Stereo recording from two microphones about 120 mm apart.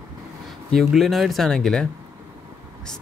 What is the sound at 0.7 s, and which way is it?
Speech, centre (ahead or behind).